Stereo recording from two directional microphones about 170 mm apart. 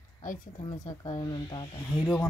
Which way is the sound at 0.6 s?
25° left (ahead or behind).